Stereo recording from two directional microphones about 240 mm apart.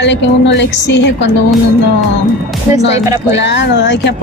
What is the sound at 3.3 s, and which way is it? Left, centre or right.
Speech, left.